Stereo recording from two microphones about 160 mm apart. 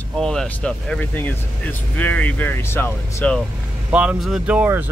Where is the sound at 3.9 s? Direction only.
5° right (ahead or behind).